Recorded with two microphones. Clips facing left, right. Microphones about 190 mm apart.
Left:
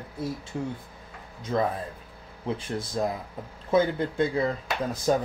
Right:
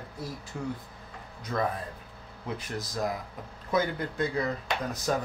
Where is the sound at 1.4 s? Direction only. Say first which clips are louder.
Left 4 dB; 25° left (ahead or behind).